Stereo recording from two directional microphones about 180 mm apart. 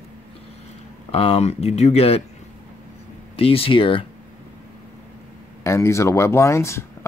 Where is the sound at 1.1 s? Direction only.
30° left (ahead or behind).